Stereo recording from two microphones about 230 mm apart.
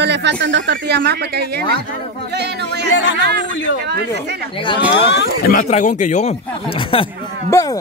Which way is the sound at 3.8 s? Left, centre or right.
Right.